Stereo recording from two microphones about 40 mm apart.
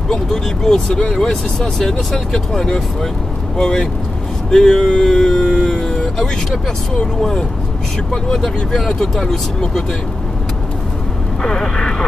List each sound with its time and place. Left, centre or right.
0.1 s speech: centre
8.1 s speech: centre
11.4 s speech: centre